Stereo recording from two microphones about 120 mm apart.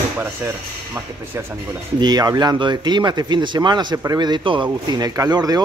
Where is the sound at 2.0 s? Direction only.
35° right (ahead or behind).